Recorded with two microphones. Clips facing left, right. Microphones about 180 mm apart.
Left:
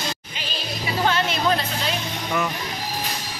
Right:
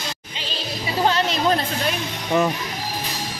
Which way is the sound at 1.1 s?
35° right (ahead or behind).